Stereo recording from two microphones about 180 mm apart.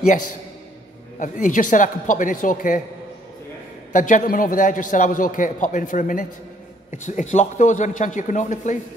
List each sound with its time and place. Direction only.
1.2 s a man's voice: 45° left (ahead or behind)
3.9 s a man's voice: 45° left (ahead or behind)